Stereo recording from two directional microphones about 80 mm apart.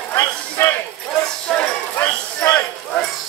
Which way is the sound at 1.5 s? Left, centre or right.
Centre.